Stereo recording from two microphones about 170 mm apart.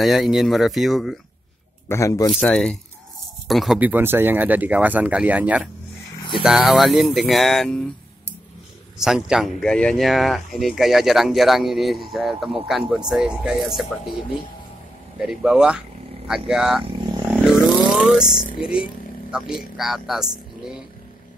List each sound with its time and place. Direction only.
0.0 s speech: centre (ahead or behind)
1.9 s a man's voice: 20° left (ahead or behind)
2.3 s speech: 5° left (ahead or behind)
15.1 s speech: 5° right (ahead or behind)
17.0 s vehicle: 25° right (ahead or behind)
17.3 s vehicle: 5° left (ahead or behind)
18.2 s speech: 55° left (ahead or behind)
18.6 s speech: 5° right (ahead or behind)